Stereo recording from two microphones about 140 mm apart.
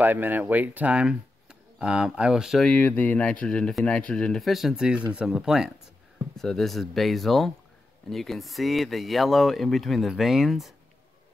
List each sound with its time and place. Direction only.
0.0 s speech: 15° right (ahead or behind)
2.7 s speech: 10° left (ahead or behind)